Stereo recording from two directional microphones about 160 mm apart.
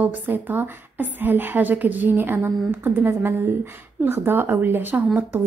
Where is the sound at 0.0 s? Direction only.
10° right (ahead or behind).